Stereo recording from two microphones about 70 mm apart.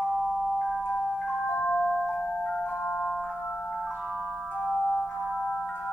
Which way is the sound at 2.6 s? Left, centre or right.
Left.